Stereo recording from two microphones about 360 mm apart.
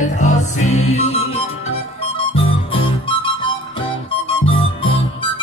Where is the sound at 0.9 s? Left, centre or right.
Centre.